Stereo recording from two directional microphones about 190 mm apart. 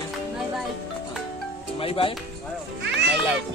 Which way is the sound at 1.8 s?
30° left (ahead or behind).